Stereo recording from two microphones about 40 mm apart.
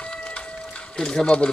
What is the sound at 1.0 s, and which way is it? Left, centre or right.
Speech, centre.